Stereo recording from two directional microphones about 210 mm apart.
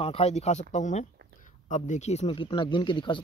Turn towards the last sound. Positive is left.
turn(degrees=25)  # may be behind; listen again after turning